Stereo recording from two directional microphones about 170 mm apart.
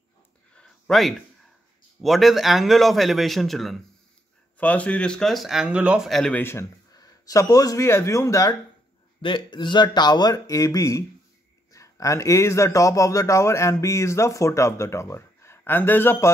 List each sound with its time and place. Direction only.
0.6 s a sound: centre (ahead or behind)
2.0 s a man's voice: centre (ahead or behind); by 8.5 s 20° left (ahead or behind)
9.2 s a man's voice: 30° left (ahead or behind); by 16.3 s 15° left (ahead or behind)